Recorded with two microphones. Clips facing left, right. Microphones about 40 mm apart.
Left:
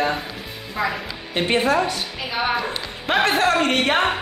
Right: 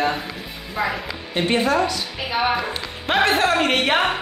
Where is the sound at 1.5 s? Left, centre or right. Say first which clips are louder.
Left 1 dB; left.